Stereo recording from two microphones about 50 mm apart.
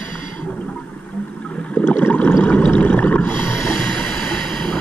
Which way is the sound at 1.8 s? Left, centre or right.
Left.